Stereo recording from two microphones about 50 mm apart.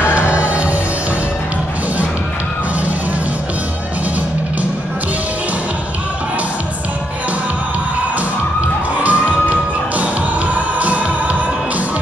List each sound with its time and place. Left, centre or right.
0.0 s music: right
9.0 s music: right